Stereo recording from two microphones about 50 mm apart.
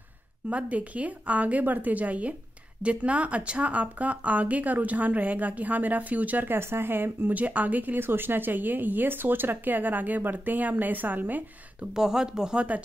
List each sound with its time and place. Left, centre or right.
0.5 s a woman's voice: right
6.5 s speech: right
7.3 s speech: right
11.9 s speech: centre